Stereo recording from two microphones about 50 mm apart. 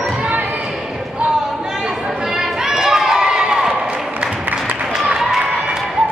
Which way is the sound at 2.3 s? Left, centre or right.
Centre.